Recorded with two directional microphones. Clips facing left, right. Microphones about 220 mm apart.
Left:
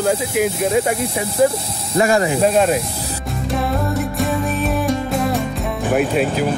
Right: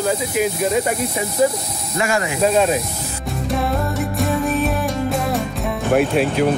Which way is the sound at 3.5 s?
Centre (ahead or behind).